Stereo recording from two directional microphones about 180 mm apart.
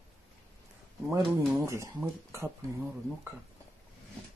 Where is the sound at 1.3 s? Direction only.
15° right (ahead or behind).